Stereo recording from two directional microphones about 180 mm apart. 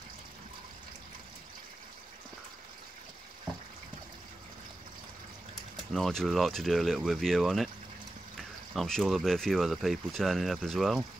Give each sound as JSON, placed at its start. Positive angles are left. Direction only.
{"t": 5.9, "sound": "speech", "side_deg": 0}